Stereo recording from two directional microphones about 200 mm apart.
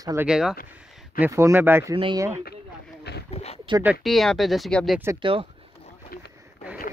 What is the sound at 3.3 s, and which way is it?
Speech, 30° left (ahead or behind).